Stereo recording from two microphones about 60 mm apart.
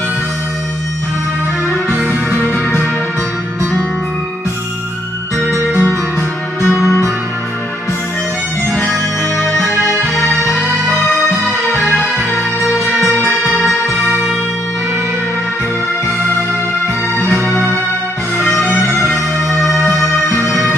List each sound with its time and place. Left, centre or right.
2.0 s music: left
5.4 s music: left
12.9 s music: right
18.4 s music: centre
20.3 s music: centre